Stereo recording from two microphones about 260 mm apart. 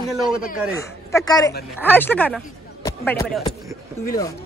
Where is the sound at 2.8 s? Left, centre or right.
Centre.